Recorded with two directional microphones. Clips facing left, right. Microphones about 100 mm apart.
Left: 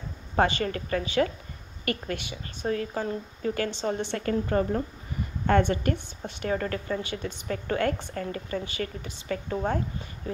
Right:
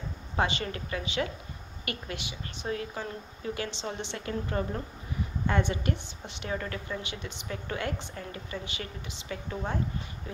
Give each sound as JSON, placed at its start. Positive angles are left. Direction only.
{"t": 0.4, "sound": "a woman's voice", "side_deg": 45}